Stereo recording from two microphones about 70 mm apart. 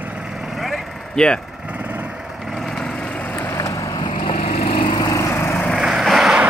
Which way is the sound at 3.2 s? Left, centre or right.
Left.